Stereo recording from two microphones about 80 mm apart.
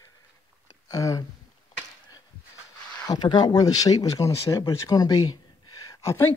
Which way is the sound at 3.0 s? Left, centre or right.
Left.